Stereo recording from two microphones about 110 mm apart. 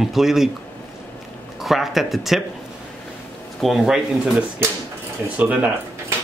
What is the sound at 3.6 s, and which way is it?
Speech, centre (ahead or behind).